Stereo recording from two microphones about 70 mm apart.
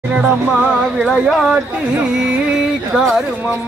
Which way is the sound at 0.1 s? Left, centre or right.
Centre.